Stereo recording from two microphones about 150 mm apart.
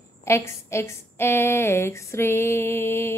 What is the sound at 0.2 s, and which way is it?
A woman's voice, 20° left (ahead or behind).